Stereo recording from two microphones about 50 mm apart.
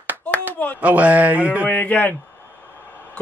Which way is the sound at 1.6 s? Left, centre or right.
Left.